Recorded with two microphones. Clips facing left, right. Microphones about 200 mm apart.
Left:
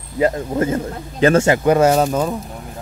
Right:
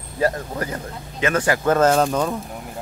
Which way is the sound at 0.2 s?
20° left (ahead or behind).